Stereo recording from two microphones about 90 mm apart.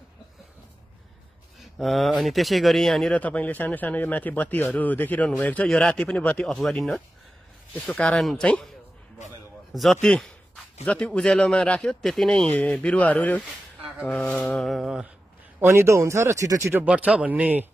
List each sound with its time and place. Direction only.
1.6 s speech: centre (ahead or behind)
3.2 s a man's voice: 15° left (ahead or behind)
5.7 s a man's voice: 5° left (ahead or behind)
9.7 s a man's voice: centre (ahead or behind); by 14.3 s 15° left (ahead or behind)
14.5 s speech: 5° left (ahead or behind)
15.6 s speech: 30° right (ahead or behind)
16.8 s a man's voice: 15° right (ahead or behind)